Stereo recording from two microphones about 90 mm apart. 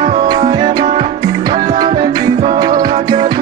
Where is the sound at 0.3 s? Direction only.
55° right (ahead or behind).